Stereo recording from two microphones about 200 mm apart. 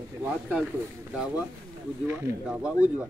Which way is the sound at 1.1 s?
5° right (ahead or behind).